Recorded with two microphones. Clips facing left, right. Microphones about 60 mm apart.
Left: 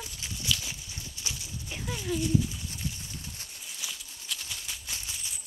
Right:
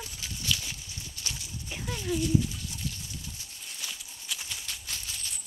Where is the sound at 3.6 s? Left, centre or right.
Centre.